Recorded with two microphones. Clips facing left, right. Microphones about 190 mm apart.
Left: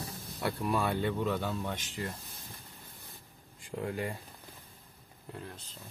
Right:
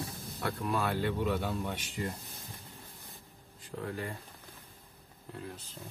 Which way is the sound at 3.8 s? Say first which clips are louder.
Left 3 dB; 15° left (ahead or behind).